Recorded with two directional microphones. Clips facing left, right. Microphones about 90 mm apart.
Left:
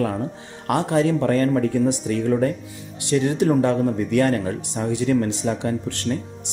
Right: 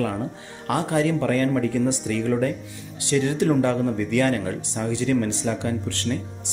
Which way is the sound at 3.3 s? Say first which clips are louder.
Left 2 dB; 20° left (ahead or behind).